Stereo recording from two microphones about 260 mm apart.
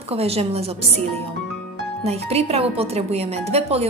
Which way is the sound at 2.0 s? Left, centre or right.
Right.